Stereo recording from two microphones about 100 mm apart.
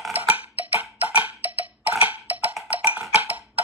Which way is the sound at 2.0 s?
15° right (ahead or behind).